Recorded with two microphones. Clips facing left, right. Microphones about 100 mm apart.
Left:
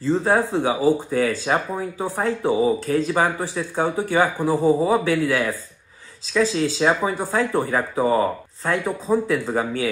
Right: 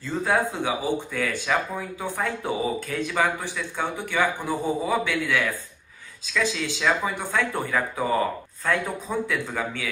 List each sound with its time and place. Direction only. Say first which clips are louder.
0.0 s speech: left 5 dB; 30° left (ahead or behind)